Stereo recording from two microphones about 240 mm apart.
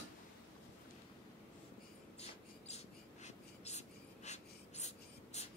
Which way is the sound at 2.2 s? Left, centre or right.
Left.